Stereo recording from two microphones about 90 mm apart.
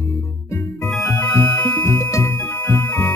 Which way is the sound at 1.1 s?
25° left (ahead or behind).